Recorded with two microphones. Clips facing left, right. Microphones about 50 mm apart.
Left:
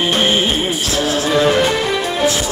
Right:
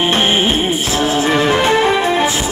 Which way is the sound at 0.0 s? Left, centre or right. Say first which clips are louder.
Right 1 dB; right.